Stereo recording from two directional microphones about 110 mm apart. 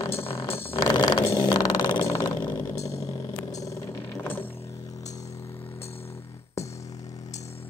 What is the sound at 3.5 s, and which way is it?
Vehicle, 30° left (ahead or behind).